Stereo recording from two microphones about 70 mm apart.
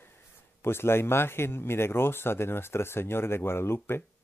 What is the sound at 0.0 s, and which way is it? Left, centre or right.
A man's voice, left.